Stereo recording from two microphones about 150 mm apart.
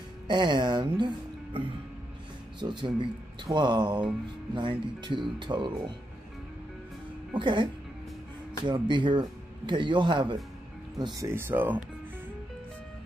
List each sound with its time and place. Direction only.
0.3 s speech: 30° right (ahead or behind)
2.6 s speech: 30° right (ahead or behind)
7.3 s speech: 30° right (ahead or behind)
8.6 s speech: 30° right (ahead or behind)
11.2 s speech: 15° right (ahead or behind)